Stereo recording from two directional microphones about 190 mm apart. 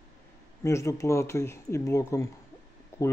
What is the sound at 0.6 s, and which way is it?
Speech, 15° left (ahead or behind).